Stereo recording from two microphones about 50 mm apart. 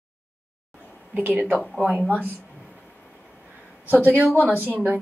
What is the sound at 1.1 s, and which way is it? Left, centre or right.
Speech, right.